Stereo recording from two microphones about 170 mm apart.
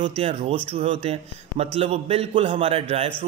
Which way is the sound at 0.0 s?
35° right (ahead or behind).